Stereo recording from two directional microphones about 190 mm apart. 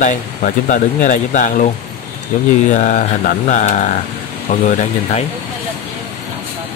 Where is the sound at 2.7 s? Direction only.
40° left (ahead or behind).